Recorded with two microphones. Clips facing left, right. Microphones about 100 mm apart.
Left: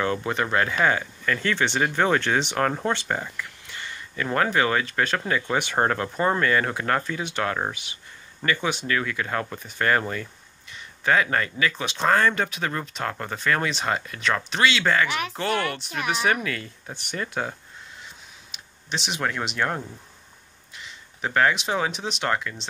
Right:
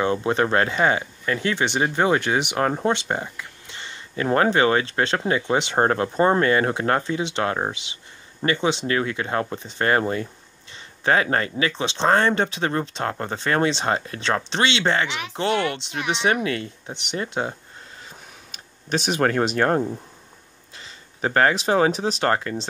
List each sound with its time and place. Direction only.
0.0 s speech: 25° right (ahead or behind)
0.4 s speech: 35° right (ahead or behind)
0.7 s speech: 20° right (ahead or behind)
18.5 s speech: 45° right (ahead or behind)